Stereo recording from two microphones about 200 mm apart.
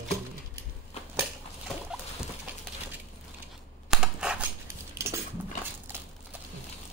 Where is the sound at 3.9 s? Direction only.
5° right (ahead or behind).